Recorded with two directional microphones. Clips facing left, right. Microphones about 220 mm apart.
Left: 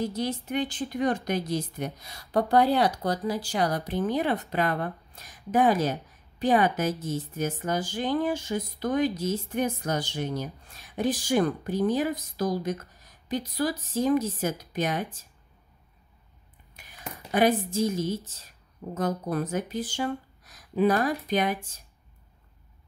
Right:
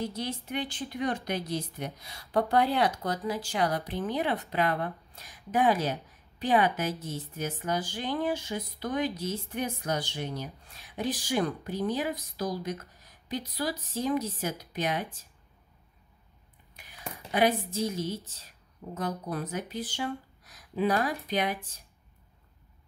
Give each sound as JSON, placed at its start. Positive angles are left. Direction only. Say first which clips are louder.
{"t": 0.0, "sound": "a woman's voice", "louder": "left 5 dB", "side_deg": 45}
{"t": 17.3, "sound": "a woman's voice", "louder": "left 3 dB", "side_deg": 45}